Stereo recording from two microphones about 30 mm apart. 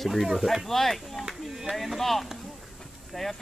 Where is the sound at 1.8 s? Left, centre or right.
Centre.